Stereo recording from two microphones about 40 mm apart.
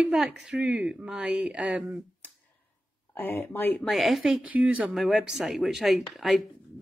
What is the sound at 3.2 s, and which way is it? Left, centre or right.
Speech, left.